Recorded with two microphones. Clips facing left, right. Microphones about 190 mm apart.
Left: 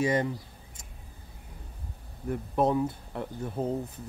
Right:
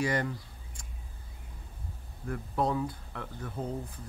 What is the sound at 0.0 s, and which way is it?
Speech, 20° left (ahead or behind).